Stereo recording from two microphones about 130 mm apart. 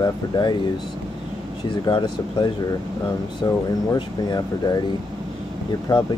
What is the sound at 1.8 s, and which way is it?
Speech, 35° left (ahead or behind).